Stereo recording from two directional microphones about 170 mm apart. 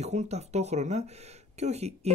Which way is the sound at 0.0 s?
40° right (ahead or behind).